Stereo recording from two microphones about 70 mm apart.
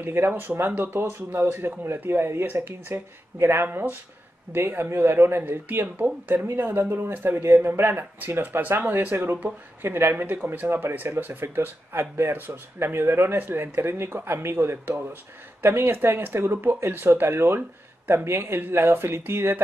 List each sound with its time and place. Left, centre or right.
0.0 s speech: right